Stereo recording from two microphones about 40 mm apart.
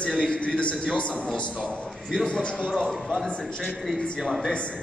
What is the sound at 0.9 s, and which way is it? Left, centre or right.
Speech, left.